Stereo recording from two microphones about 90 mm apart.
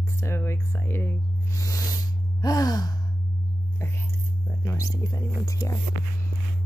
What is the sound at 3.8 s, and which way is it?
Whispering, 30° left (ahead or behind).